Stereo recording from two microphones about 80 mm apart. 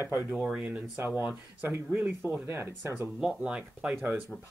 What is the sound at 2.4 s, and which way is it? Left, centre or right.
Speech, right.